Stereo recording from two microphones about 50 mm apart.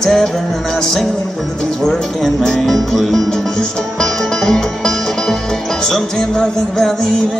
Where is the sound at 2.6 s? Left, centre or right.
Centre.